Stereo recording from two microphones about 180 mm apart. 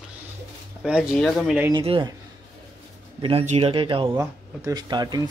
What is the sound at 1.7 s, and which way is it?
Speech, 30° right (ahead or behind).